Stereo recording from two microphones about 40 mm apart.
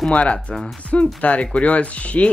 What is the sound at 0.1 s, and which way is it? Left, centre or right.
Speech, left.